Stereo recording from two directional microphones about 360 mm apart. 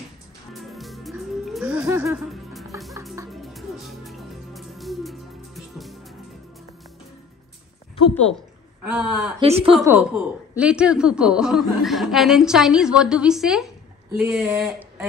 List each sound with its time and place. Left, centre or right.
0.5 s music: centre
7.9 s a sound: centre
8.9 s speech: centre
9.4 s speech: centre
9.8 s speech: centre